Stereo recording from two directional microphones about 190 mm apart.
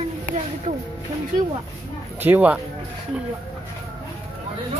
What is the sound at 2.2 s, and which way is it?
Speech, 10° right (ahead or behind).